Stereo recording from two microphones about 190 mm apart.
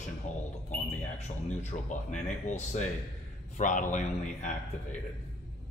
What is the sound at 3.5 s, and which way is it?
Speech, 40° left (ahead or behind).